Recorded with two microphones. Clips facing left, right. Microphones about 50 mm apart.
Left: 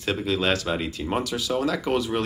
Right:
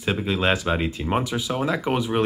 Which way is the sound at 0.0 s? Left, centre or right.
Centre.